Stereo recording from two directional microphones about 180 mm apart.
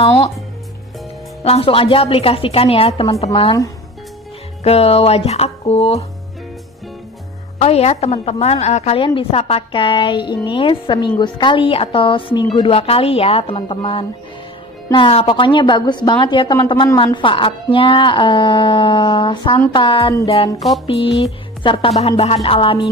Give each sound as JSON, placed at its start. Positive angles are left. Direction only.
{"t": 0.0, "sound": "a woman's voice", "side_deg": 30}
{"t": 1.4, "sound": "a woman's voice", "side_deg": 30}
{"t": 4.6, "sound": "a woman's voice", "side_deg": 35}
{"t": 7.5, "sound": "a woman's voice", "side_deg": 35}
{"t": 21.2, "sound": "a woman's voice", "side_deg": 30}